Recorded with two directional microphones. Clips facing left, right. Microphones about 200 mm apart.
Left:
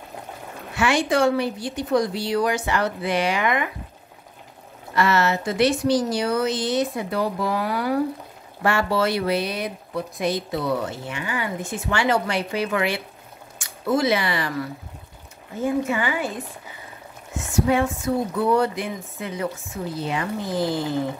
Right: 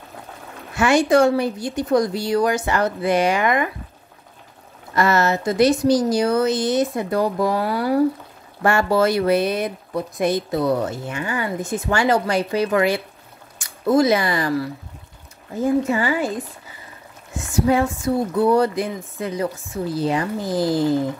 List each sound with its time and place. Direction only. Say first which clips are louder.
0.7 s speech: right 5 dB; 45° right (ahead or behind)
4.9 s speech: right 2 dB; 45° right (ahead or behind)
15.6 s speech: right 4 dB; 35° right (ahead or behind)
17.6 s speech: right 3 dB; 35° right (ahead or behind)